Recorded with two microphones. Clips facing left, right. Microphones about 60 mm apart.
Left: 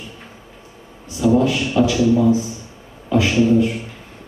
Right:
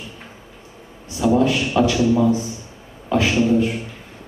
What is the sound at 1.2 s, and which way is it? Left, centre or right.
A man's voice, right.